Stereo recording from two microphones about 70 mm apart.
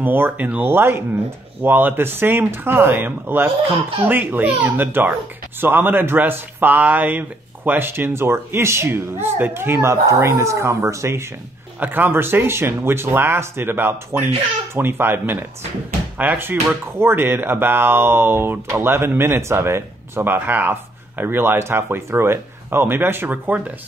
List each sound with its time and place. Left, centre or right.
0.0 s a child's voice: right
11.8 s a child's voice: right